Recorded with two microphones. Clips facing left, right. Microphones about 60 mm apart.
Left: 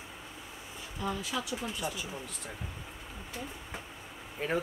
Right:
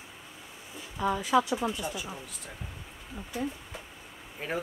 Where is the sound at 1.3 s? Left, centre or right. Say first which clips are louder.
Right 12 dB; right.